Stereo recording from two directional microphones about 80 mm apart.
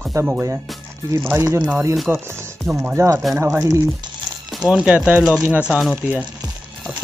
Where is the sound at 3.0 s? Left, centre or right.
Right.